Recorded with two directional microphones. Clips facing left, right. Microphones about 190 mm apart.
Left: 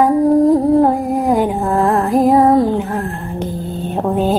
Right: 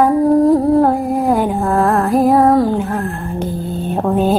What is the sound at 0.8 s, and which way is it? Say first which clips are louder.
Music: even; 15° left (ahead or behind).